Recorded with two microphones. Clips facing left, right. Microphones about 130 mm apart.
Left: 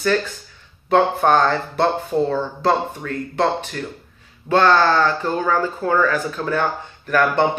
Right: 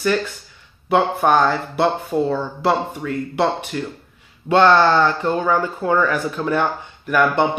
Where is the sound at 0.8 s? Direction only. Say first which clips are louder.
Left 1 dB; 10° right (ahead or behind).